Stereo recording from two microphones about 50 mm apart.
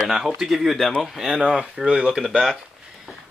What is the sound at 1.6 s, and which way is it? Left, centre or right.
Speech, centre.